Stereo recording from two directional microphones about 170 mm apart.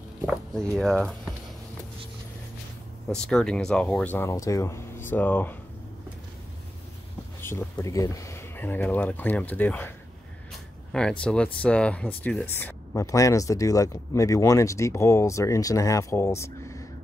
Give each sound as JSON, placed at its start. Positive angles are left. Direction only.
{"t": 0.6, "sound": "speech", "side_deg": 5}
{"t": 3.1, "sound": "speech", "side_deg": 5}
{"t": 7.4, "sound": "speech", "side_deg": 15}